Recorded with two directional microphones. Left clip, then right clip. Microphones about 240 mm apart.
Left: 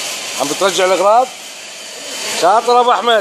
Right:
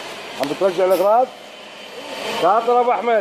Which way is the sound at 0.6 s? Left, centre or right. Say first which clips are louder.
Left 3 dB; left.